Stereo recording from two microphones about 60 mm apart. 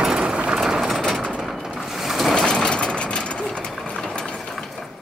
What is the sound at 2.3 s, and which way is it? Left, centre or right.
Vehicle, centre.